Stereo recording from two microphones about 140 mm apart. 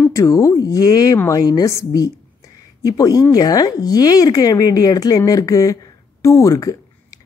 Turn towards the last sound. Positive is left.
turn(degrees=25)  # may be behind; listen again after turning